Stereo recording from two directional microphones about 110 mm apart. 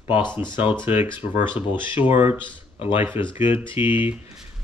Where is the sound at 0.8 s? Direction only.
20° right (ahead or behind).